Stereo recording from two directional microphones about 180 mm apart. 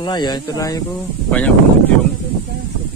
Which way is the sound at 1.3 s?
5° left (ahead or behind).